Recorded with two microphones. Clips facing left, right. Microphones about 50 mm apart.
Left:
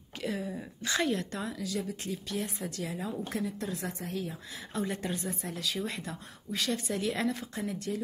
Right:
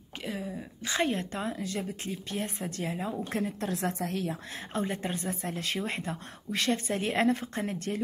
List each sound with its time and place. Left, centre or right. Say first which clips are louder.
0.2 s a sound: left 2 dB; centre
0.8 s a woman's voice: right 1 dB; right
3.3 s speech: right 3 dB; right
3.6 s a woman's voice: right 5 dB; right
4.7 s a woman's voice: right 1 dB; right